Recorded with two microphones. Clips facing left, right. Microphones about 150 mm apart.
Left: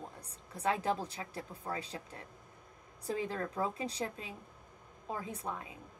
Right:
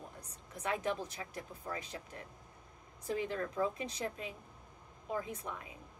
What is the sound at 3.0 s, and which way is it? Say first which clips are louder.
A woman's voice: even; 35° left (ahead or behind).